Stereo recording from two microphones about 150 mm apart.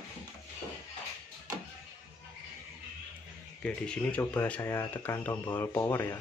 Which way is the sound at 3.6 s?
5° left (ahead or behind).